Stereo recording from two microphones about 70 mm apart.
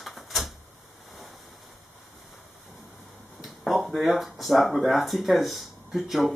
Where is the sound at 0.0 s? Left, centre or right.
Centre.